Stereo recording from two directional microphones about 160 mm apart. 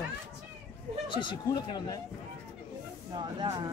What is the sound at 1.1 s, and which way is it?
Speech, 30° left (ahead or behind).